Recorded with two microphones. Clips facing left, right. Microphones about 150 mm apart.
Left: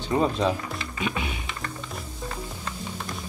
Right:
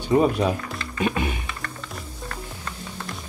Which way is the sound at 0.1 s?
15° right (ahead or behind).